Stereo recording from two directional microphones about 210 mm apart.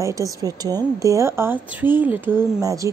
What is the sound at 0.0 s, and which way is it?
Speech, 15° right (ahead or behind).